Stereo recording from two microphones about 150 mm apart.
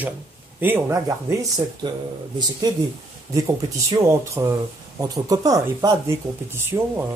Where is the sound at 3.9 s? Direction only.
20° right (ahead or behind).